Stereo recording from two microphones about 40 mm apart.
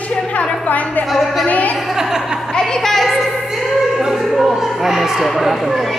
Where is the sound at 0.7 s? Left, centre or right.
Left.